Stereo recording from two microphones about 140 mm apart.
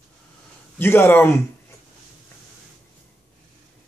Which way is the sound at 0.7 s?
15° left (ahead or behind).